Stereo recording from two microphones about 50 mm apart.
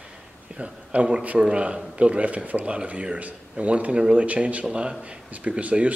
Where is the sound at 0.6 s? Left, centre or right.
Right.